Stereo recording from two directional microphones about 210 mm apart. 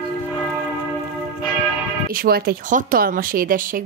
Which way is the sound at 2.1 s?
45° right (ahead or behind).